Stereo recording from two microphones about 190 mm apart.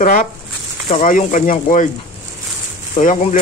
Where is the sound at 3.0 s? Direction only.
40° left (ahead or behind).